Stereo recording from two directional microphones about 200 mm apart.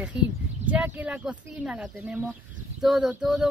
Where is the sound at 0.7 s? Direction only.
10° right (ahead or behind).